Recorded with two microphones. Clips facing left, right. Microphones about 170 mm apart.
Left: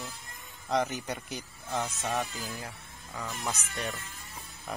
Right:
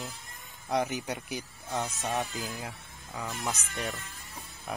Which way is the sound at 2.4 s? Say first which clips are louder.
Right 2 dB; centre (ahead or behind).